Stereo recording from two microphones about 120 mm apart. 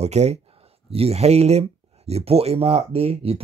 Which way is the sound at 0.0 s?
65° right (ahead or behind).